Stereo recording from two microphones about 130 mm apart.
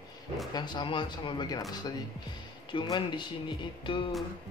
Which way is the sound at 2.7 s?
35° left (ahead or behind).